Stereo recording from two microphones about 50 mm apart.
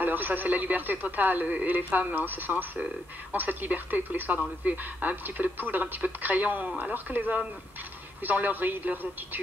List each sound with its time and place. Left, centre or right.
0.0 s speech: right